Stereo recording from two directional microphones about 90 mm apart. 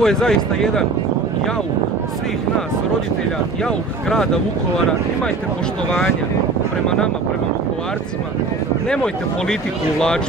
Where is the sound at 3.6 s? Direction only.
5° left (ahead or behind).